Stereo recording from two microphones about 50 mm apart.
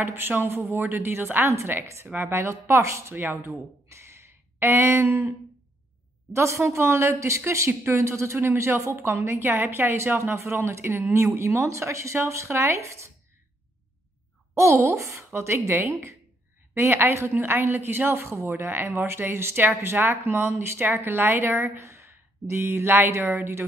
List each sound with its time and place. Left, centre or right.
0.0 s speech: right
3.2 s speech: right
3.9 s a sound: right
6.3 s a woman's voice: right
7.8 s speech: right
14.5 s speech: right
17.3 s speech: right
21.7 s speech: right